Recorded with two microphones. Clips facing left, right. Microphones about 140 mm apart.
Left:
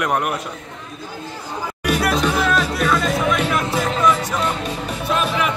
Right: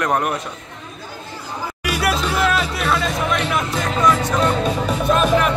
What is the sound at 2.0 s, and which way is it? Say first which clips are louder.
Music: right 1 dB; 5° right (ahead or behind).